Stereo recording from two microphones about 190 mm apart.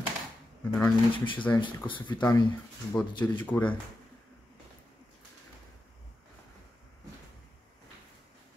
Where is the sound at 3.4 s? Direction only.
10° left (ahead or behind).